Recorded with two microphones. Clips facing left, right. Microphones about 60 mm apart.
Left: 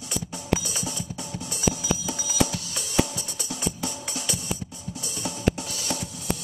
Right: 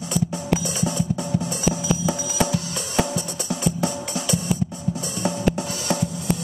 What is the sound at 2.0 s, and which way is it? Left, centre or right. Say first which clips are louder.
Music: right 4 dB; right.